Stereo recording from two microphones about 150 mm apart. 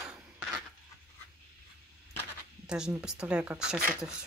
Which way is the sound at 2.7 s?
5° right (ahead or behind).